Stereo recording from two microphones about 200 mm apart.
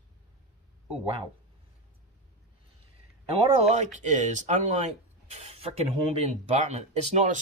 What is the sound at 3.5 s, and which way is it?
Speech, 35° right (ahead or behind).